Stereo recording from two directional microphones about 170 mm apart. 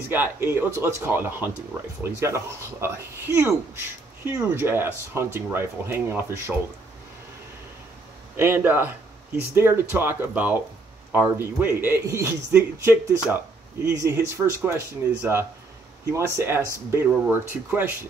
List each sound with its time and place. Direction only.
0.1 s speech: 10° right (ahead or behind)
8.4 s speech: 10° right (ahead or behind)